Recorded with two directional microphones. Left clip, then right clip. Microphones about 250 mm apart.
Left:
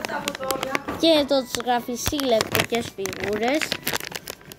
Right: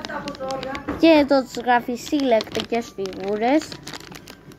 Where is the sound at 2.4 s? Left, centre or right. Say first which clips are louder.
Even; left.